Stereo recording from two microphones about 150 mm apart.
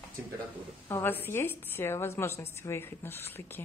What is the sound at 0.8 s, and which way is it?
A woman's voice, 15° left (ahead or behind).